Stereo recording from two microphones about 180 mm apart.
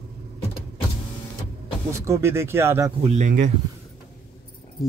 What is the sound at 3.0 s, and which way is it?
Speech, 40° right (ahead or behind).